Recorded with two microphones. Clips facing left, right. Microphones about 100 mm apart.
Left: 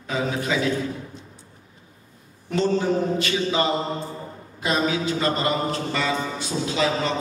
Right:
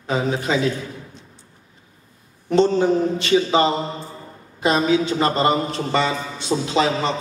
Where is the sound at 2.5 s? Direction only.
25° right (ahead or behind).